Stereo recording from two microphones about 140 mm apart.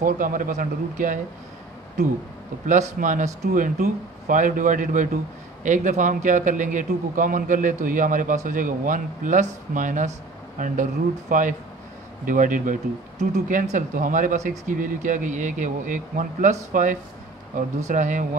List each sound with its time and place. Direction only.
0.0 s a man's voice: 70° right (ahead or behind)
2.6 s a man's voice: 65° right (ahead or behind)